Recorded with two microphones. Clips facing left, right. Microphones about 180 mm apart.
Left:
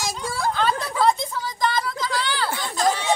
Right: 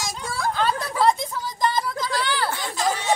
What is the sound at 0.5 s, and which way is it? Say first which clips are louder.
Speech: right 1 dB; 10° right (ahead or behind).